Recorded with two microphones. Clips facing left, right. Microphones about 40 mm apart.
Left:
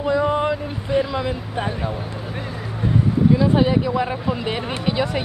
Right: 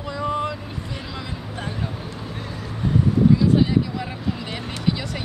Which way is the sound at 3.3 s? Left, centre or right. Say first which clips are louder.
Left 2 dB; left.